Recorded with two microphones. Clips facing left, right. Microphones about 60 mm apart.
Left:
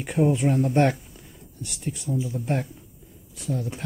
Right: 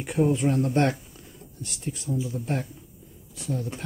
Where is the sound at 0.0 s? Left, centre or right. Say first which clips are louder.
Left 1 dB; centre.